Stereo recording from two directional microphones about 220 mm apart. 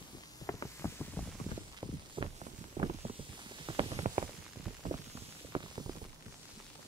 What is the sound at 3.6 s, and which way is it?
Clip-clop, 25° right (ahead or behind).